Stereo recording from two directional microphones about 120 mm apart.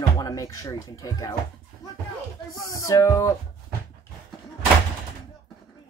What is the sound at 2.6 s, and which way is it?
Speech, 30° left (ahead or behind).